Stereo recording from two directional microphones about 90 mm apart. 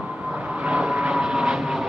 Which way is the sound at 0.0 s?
15° right (ahead or behind).